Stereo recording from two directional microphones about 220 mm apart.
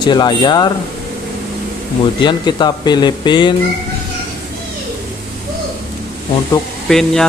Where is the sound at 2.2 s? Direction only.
20° left (ahead or behind).